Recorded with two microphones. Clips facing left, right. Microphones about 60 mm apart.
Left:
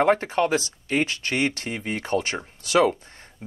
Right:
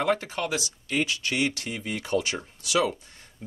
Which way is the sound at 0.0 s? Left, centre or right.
Left.